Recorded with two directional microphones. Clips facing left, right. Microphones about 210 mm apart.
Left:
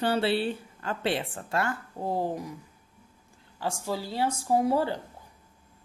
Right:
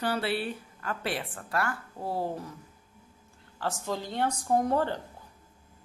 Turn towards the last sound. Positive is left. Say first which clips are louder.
# left 1 dB
turn(degrees=10)  # may be behind; listen again after turning